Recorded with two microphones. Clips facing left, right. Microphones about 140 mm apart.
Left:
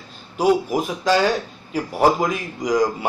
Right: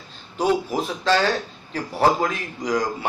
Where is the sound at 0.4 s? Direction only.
10° left (ahead or behind).